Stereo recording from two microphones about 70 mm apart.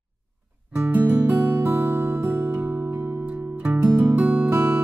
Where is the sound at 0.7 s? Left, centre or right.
Right.